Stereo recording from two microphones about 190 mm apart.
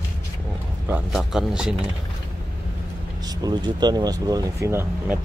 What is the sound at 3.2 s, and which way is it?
Speech, 20° right (ahead or behind).